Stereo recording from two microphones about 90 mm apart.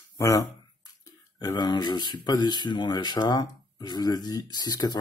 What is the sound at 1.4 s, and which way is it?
Speech, 50° left (ahead or behind).